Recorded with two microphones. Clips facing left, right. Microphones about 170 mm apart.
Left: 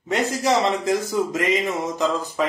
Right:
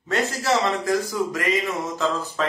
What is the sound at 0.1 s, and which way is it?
Speech, 15° left (ahead or behind).